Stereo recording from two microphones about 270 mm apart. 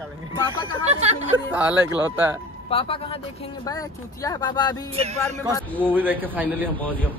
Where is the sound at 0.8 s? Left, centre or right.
Right.